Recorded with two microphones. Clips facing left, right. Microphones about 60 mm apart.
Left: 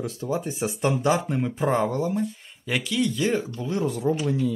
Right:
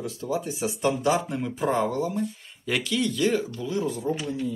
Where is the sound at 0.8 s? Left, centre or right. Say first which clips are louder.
Left 1 dB; left.